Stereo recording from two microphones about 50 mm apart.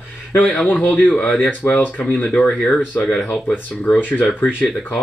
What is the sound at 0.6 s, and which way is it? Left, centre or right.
Speech, left.